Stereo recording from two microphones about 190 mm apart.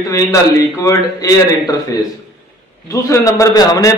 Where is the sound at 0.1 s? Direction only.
20° left (ahead or behind).